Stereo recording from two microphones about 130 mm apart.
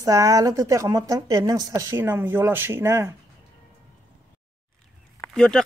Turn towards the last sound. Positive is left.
turn(degrees=5)  # may be behind; listen again after turning